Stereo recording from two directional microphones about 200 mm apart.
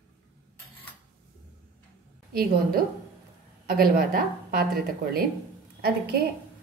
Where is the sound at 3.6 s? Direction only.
45° right (ahead or behind).